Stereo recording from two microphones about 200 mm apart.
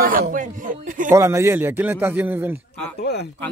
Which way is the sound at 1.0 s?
15° right (ahead or behind).